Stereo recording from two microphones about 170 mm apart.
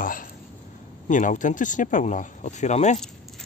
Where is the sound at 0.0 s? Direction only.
55° left (ahead or behind).